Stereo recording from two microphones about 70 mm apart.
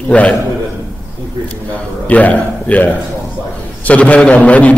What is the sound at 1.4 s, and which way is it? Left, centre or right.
A man's voice, centre.